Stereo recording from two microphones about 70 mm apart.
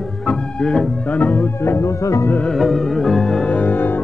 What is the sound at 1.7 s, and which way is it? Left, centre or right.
Music, left.